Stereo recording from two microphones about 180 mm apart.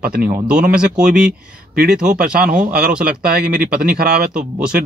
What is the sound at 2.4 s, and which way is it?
A man's voice, 50° right (ahead or behind).